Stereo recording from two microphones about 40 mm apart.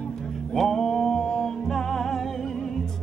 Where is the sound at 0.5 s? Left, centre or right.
Centre.